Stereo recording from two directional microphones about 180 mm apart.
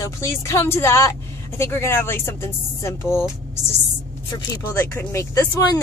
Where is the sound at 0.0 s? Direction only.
15° left (ahead or behind).